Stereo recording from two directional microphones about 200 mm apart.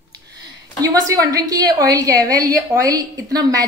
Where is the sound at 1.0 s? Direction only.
15° right (ahead or behind).